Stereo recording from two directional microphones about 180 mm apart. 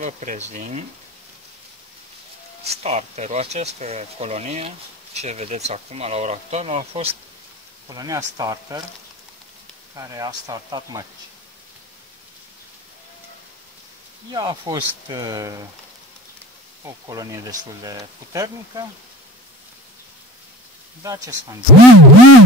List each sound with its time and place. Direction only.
0.0 s speech: 40° right (ahead or behind)
2.6 s speech: 35° right (ahead or behind)
7.9 s speech: 20° right (ahead or behind)
9.9 s speech: 20° right (ahead or behind)
14.3 s speech: 20° right (ahead or behind)
16.8 s speech: 20° right (ahead or behind)
21.0 s speech: 20° right (ahead or behind)